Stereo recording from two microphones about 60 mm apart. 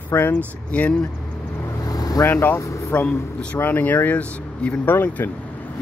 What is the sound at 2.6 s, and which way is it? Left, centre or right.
Vehicle, left.